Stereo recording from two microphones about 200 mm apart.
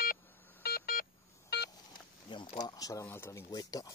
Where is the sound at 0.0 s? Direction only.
50° left (ahead or behind).